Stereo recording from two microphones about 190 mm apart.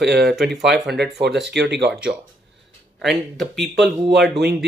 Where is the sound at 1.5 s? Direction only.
65° right (ahead or behind).